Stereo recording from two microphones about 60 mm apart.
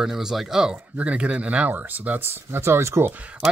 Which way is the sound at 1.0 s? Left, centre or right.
Right.